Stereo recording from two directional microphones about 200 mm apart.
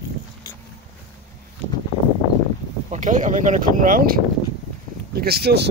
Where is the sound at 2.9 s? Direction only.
40° right (ahead or behind).